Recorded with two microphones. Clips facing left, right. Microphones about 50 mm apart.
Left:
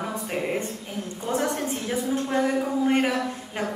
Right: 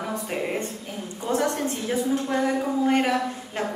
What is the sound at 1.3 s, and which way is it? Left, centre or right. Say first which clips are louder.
Speech: right 2 dB; centre.